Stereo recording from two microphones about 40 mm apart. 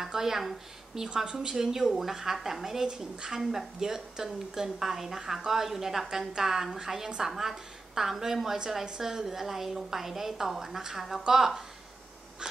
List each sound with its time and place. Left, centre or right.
0.0 s speech: centre
1.0 s a woman's voice: centre